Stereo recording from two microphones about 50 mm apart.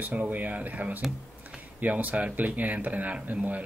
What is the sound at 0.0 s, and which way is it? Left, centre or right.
Speech, right.